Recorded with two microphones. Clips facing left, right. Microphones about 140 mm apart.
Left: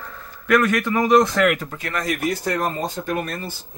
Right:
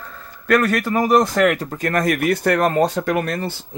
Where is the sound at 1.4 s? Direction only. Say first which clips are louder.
Right 3 dB; 40° right (ahead or behind).